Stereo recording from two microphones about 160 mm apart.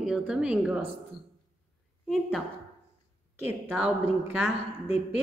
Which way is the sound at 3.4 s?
10° right (ahead or behind).